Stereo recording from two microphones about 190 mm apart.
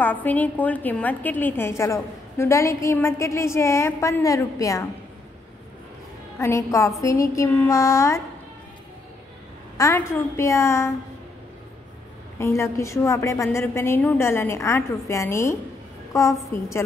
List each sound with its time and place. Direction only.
0.0 s a woman's voice: 10° left (ahead or behind)
6.4 s a woman's voice: 15° left (ahead or behind)
9.8 s a woman's voice: 15° left (ahead or behind)
12.4 s a woman's voice: 15° left (ahead or behind)